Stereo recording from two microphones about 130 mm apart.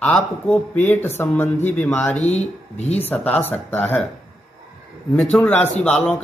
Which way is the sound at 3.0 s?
15° left (ahead or behind).